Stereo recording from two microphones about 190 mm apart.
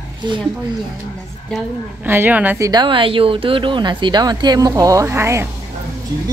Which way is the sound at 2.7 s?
25° right (ahead or behind).